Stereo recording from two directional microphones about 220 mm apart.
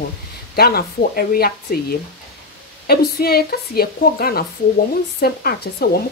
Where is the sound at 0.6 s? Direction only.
45° left (ahead or behind).